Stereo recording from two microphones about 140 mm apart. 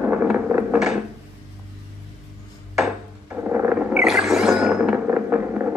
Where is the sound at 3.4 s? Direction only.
15° right (ahead or behind).